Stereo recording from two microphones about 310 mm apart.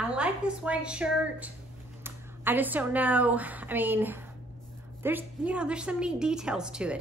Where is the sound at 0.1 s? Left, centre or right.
Centre.